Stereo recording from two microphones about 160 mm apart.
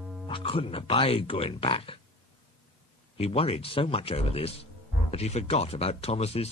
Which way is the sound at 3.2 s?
40° left (ahead or behind).